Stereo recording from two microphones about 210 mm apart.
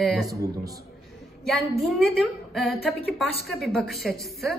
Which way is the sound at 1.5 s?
Centre (ahead or behind).